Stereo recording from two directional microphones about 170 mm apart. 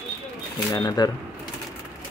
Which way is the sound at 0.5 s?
20° left (ahead or behind).